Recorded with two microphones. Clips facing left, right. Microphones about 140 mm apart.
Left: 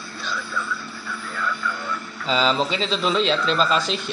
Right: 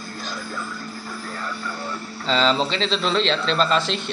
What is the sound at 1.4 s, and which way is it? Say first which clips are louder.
Music: left 6 dB; 35° right (ahead or behind).